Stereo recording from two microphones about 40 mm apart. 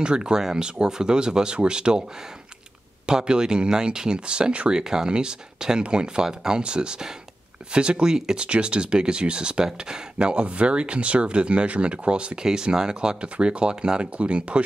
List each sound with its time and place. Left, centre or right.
0.0 s speech: right
3.1 s speech: right